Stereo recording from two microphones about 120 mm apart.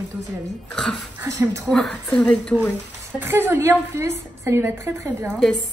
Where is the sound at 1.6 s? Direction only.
5° left (ahead or behind).